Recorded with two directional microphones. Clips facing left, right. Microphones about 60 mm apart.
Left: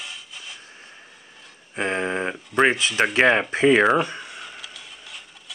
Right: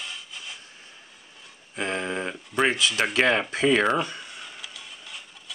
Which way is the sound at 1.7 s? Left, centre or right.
Left.